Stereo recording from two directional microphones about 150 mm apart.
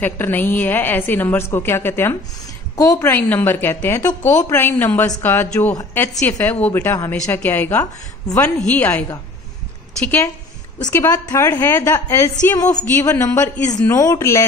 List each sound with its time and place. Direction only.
0.0 s a woman's voice: 15° left (ahead or behind)
3.0 s a woman's voice: 10° left (ahead or behind)
8.6 s a woman's voice: 10° left (ahead or behind)
10.0 s a woman's voice: 15° left (ahead or behind)